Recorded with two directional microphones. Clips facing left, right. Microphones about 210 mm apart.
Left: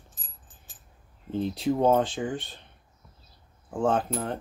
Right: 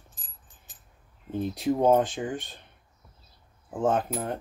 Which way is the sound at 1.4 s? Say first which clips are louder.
Even; 15° right (ahead or behind).